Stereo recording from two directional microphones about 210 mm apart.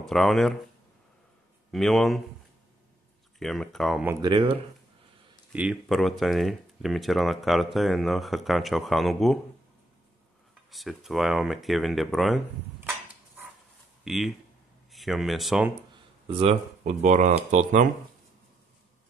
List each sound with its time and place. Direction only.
0.0 s speech: centre (ahead or behind)
1.7 s speech: centre (ahead or behind)
3.3 s speech: centre (ahead or behind)
4.1 s speech: 20° right (ahead or behind)
5.5 s speech: 5° right (ahead or behind)
10.7 s speech: centre (ahead or behind)
14.0 s speech: centre (ahead or behind)
15.9 s speech: 25° right (ahead or behind)